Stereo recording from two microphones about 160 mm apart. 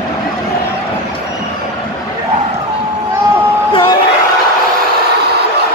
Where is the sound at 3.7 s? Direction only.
30° left (ahead or behind).